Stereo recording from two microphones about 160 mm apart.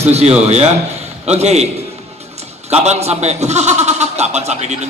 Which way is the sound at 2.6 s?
40° right (ahead or behind).